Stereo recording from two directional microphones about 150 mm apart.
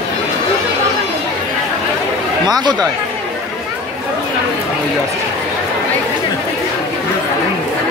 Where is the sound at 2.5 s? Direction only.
25° right (ahead or behind).